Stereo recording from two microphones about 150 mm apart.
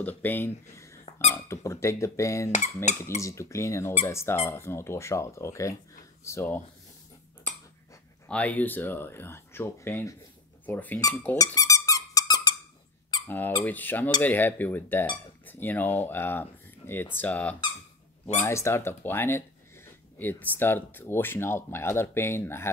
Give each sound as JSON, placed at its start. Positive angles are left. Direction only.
{"t": 0.0, "sound": "squeak", "side_deg": 10}
{"t": 1.3, "sound": "speech", "side_deg": 20}
{"t": 2.5, "sound": "speech", "side_deg": 50}
{"t": 3.2, "sound": "speech", "side_deg": 20}
{"t": 8.3, "sound": "speech", "side_deg": 10}
{"t": 11.3, "sound": "squeak", "side_deg": 25}
{"t": 13.7, "sound": "speech", "side_deg": 10}